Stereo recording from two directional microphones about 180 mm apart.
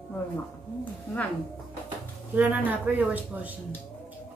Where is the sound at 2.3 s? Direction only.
10° right (ahead or behind).